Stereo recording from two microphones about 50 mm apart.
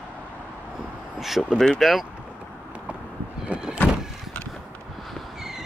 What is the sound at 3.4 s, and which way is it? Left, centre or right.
Sliding door, centre.